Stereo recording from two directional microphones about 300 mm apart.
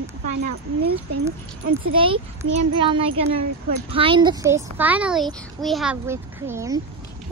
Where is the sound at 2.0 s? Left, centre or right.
Centre.